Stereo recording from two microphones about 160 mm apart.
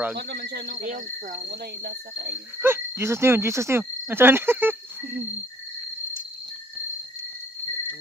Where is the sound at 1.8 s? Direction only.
90° right.